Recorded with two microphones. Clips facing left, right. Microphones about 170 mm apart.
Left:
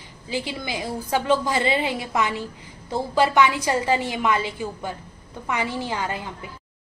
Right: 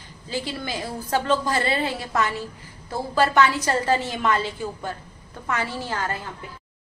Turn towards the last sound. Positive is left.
turn(degrees=15)  # may be behind; listen again after turning